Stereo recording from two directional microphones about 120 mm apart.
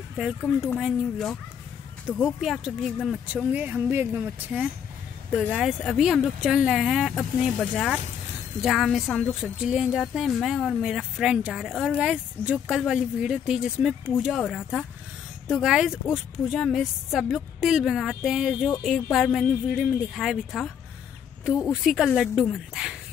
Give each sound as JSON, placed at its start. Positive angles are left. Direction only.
{"t": 0.4, "sound": "speech", "side_deg": 15}
{"t": 2.2, "sound": "a woman's voice", "side_deg": 0}
{"t": 3.5, "sound": "a woman's voice", "side_deg": -15}
{"t": 14.4, "sound": "a woman's voice", "side_deg": 5}
{"t": 21.8, "sound": "a woman's voice", "side_deg": 0}